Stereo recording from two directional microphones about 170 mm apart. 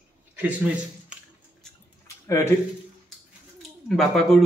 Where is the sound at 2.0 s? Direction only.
15° left (ahead or behind).